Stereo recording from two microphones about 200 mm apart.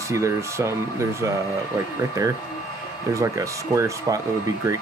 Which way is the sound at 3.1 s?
15° right (ahead or behind).